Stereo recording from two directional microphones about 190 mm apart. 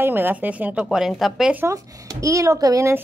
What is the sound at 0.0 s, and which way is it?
A woman's voice, 10° right (ahead or behind).